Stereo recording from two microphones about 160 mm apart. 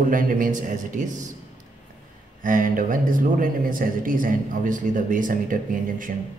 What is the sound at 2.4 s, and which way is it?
Speech, 60° right (ahead or behind).